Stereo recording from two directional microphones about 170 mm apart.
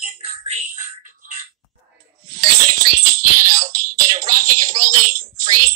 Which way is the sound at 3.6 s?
20° right (ahead or behind).